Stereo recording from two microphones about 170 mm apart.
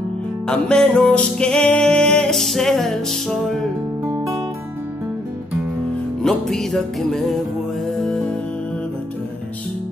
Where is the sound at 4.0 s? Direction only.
15° right (ahead or behind).